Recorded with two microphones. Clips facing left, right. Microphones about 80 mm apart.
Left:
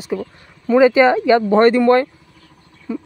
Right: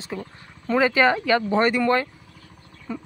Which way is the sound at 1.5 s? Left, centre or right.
Left.